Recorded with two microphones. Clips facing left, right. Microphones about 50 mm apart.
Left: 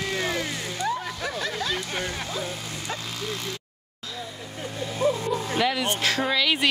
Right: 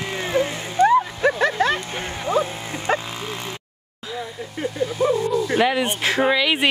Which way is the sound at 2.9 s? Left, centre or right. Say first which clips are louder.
Right 6 dB; right.